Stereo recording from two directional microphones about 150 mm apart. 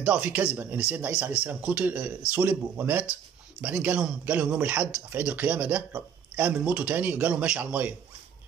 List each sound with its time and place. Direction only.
0.0 s speech: 10° right (ahead or behind)